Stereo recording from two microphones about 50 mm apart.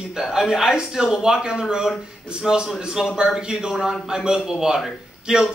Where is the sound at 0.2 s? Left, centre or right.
Centre.